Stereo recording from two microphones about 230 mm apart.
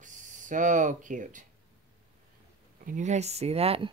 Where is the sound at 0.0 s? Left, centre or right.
Right.